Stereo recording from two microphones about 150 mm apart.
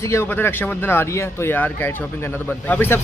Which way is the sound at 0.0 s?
15° left (ahead or behind).